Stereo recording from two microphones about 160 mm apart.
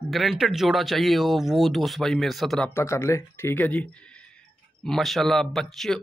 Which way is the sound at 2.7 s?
15° left (ahead or behind).